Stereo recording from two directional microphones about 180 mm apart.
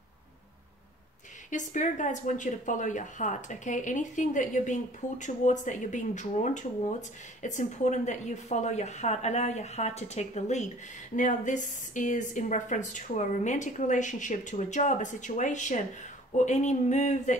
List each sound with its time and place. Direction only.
1.5 s a woman's voice: 45° left (ahead or behind)